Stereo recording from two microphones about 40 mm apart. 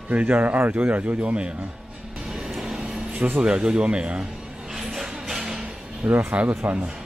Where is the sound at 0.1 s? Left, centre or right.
Right.